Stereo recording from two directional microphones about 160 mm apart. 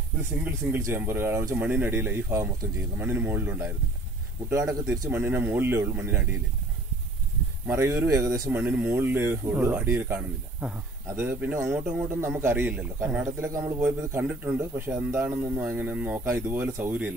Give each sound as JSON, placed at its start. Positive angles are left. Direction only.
{"t": 0.7, "sound": "speech", "side_deg": -15}
{"t": 7.6, "sound": "speech", "side_deg": -15}